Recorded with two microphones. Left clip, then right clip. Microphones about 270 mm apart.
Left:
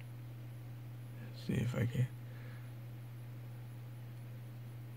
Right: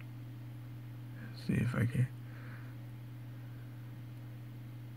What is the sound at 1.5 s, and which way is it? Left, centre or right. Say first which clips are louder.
Speech: right 3 dB; centre.